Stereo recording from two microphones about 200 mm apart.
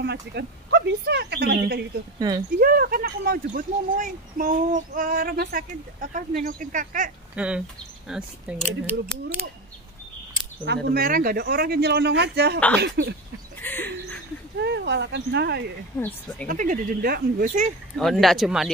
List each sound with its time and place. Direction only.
0.0 s speech: 55° right (ahead or behind)
2.1 s speech: 20° right (ahead or behind)
2.6 s speech: 45° right (ahead or behind)
7.3 s speech: 5° right (ahead or behind)
10.6 s speech: 50° right (ahead or behind)
13.6 s a sound: 10° left (ahead or behind)
14.6 s speech: 60° right (ahead or behind)
16.0 s speech: 10° left (ahead or behind)
16.4 s speech: 40° right (ahead or behind)
17.9 s speech: centre (ahead or behind)